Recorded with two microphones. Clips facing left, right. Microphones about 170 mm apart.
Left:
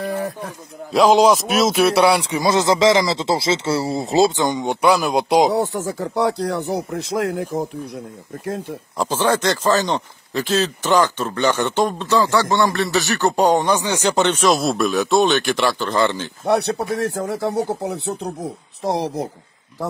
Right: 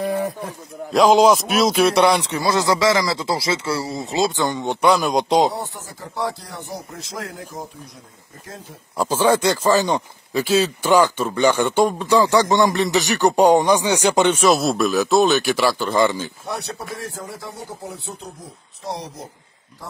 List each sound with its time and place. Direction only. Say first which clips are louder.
0.0 s a sound: right 2 dB; 10° right (ahead or behind)
0.9 s speech: even; centre (ahead or behind)
2.4 s speech: left 3 dB; 20° left (ahead or behind)
4.4 s speech: left 1 dB; 15° left (ahead or behind)
5.5 s a man's voice: left 10 dB; 75° left (ahead or behind)
8.9 s speech: right 2 dB; 10° right (ahead or behind)
16.4 s a man's voice: left 16 dB; 70° left (ahead or behind)